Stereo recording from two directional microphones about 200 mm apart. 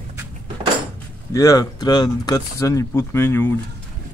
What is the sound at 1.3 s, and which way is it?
Speech, 15° left (ahead or behind).